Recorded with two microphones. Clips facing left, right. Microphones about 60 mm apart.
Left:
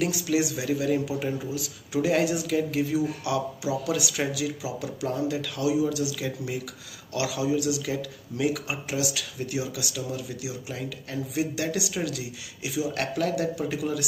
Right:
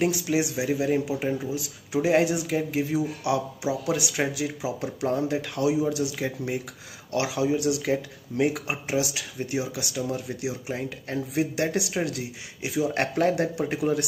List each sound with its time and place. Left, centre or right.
0.0 s speech: right